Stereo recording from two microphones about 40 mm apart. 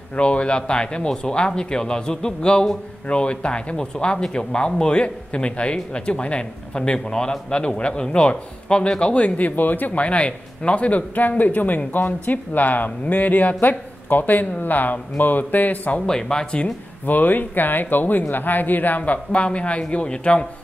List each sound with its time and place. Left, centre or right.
0.1 s speech: left
9.4 s speech: left
10.0 s a man's voice: left
16.1 s speech: centre
17.0 s speech: left
19.3 s speech: left